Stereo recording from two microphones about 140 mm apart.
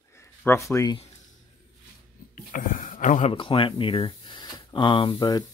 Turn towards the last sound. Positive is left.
turn(degrees=30)  # may be behind; listen again after turning